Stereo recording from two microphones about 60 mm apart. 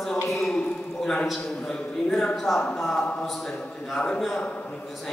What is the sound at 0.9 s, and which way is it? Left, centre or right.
Speech, centre.